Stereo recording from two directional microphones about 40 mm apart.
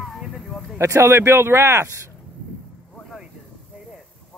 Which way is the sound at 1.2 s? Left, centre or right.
Right.